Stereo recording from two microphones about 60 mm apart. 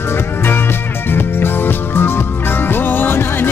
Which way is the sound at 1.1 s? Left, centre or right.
Left.